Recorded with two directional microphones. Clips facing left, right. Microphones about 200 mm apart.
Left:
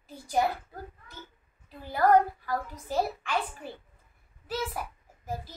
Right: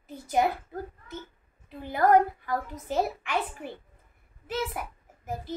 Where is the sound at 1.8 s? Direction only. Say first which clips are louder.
Right 1 dB; 20° right (ahead or behind).